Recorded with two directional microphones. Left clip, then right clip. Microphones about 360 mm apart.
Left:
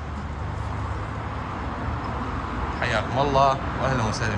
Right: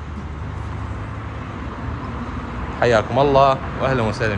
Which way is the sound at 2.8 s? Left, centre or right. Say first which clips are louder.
Right 9 dB; left.